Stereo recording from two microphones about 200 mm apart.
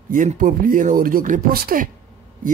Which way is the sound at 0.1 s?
40° right (ahead or behind).